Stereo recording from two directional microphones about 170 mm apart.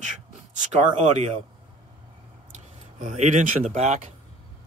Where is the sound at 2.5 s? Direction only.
45° right (ahead or behind).